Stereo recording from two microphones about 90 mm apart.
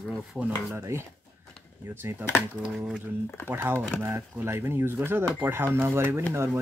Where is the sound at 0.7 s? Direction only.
35° right (ahead or behind).